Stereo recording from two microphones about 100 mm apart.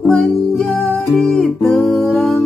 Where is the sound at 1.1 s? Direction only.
5° left (ahead or behind).